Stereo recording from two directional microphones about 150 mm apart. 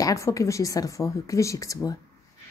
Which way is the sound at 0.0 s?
20° left (ahead or behind).